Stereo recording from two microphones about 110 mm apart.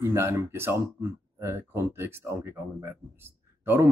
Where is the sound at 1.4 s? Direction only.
25° right (ahead or behind).